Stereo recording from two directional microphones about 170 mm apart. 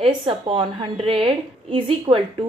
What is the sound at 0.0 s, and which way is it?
Speech, 30° right (ahead or behind).